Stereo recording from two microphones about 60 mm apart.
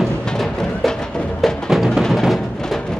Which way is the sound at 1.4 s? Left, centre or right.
Centre.